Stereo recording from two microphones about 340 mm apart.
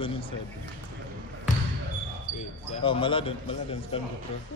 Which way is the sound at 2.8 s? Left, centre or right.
Centre.